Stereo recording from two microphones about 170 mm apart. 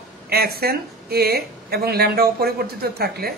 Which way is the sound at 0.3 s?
65° right (ahead or behind).